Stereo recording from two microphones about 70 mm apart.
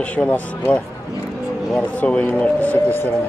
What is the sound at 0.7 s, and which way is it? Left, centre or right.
Speech, left.